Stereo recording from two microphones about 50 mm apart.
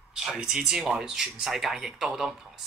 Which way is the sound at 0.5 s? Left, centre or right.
Centre.